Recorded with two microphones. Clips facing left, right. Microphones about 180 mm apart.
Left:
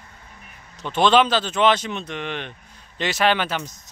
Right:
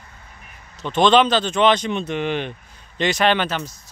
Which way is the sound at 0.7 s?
10° left (ahead or behind).